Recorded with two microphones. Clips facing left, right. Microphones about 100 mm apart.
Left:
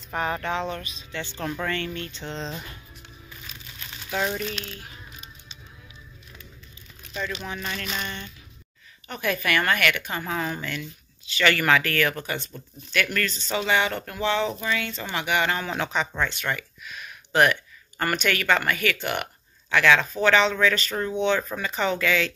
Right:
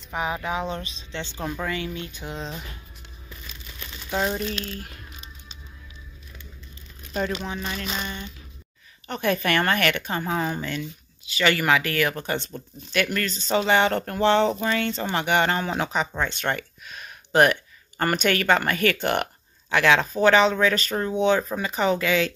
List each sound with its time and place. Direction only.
0.1 s speech: 5° right (ahead or behind)
4.1 s speech: 20° right (ahead or behind)
4.4 s speech: 40° right (ahead or behind)
7.2 s speech: 45° right (ahead or behind)
7.4 s a woman's voice: 20° right (ahead or behind)
13.6 s a woman's voice: 35° right (ahead or behind); by 16.4 s 20° right (ahead or behind)
16.4 s a sound: 35° right (ahead or behind)
17.9 s speech: 25° right (ahead or behind)
19.7 s a woman's voice: 25° right (ahead or behind)